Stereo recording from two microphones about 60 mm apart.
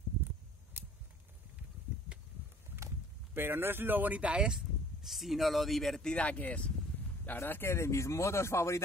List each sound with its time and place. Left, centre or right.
0.8 s a sound: right
3.3 s speech: right; by 6.1 s centre
6.1 s speech: left
7.2 s speech: left